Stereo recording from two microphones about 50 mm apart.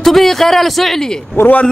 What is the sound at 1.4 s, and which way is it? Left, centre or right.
Speech, left.